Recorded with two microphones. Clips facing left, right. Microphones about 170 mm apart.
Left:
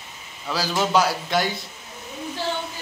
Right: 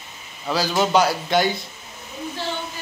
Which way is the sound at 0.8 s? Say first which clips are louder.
Right 2 dB; centre (ahead or behind).